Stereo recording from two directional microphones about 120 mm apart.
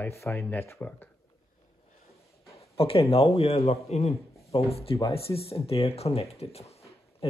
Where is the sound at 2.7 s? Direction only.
55° left (ahead or behind).